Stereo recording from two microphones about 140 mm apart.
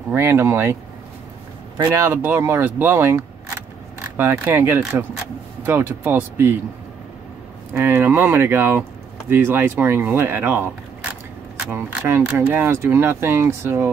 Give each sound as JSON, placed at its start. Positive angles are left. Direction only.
{"t": 0.1, "sound": "speech", "side_deg": -15}
{"t": 1.8, "sound": "speech", "side_deg": -20}
{"t": 7.7, "sound": "speech", "side_deg": -15}